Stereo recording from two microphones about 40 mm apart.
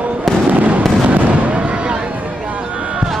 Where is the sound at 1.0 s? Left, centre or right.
Right.